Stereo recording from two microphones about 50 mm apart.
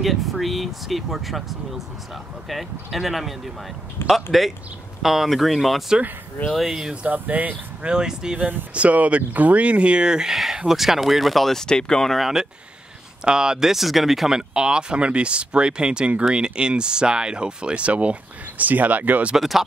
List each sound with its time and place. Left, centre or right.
0.0 s speech: centre
7.0 s speech: right
7.8 s speech: centre
8.4 s speech: right; by 12.2 s centre
12.2 s speech: centre; by 19.3 s right
19.3 s speech: centre